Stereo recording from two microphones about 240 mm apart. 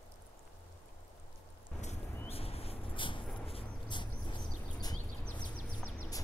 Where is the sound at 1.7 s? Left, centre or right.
Left.